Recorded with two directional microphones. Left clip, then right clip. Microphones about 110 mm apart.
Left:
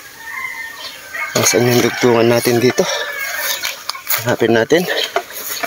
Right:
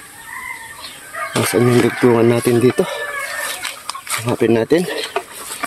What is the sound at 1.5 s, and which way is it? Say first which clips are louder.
Speech: even; 20° right (ahead or behind).